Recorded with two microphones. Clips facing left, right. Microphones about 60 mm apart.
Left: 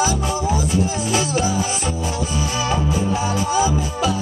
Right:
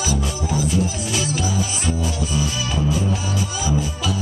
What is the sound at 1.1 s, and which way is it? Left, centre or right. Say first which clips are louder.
Music: left 4 dB; left.